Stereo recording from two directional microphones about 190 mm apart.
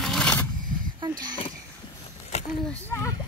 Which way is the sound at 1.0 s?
20° right (ahead or behind).